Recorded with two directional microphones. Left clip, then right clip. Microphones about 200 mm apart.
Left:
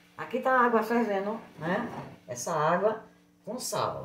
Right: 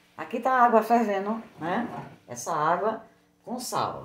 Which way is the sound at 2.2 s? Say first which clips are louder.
Right 2 dB; 50° right (ahead or behind).